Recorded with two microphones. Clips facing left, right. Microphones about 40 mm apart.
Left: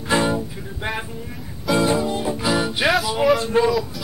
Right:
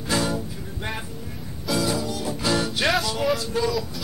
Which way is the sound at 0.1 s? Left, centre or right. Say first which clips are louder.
Left 5 dB; left.